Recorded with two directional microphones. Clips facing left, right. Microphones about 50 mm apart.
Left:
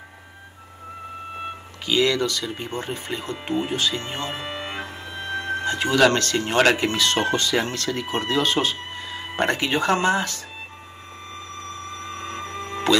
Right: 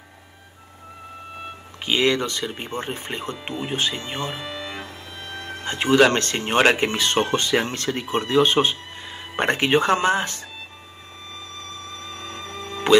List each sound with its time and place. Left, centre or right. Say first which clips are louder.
1.9 s speech: even; right
4.2 s music: even; left
5.7 s speech: right 2 dB; right
11.6 s a sound: left 4 dB; left